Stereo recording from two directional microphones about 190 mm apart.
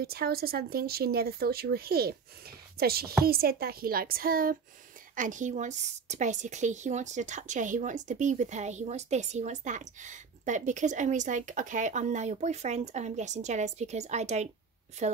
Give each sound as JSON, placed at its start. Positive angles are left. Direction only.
{"t": 0.0, "sound": "a woman's voice", "side_deg": -55}